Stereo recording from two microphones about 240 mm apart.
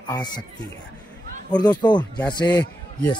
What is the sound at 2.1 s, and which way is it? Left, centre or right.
Speech, centre.